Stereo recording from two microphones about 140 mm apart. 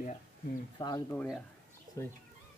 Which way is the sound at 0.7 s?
30° left (ahead or behind).